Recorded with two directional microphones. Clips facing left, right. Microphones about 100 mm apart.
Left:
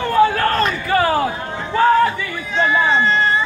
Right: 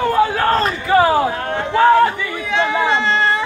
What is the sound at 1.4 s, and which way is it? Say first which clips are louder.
Speech: right 2 dB; 70° right (ahead or behind).